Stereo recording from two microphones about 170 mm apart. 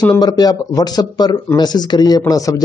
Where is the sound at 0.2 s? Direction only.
25° left (ahead or behind).